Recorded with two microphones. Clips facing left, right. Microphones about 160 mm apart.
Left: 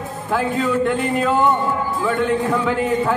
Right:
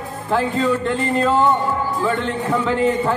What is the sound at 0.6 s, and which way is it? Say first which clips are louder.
Speech: even; 5° left (ahead or behind).